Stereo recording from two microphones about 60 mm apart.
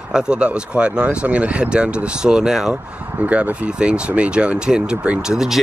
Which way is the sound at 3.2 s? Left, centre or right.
Right.